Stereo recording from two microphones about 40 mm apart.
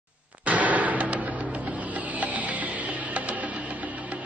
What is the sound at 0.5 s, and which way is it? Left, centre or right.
Music, right.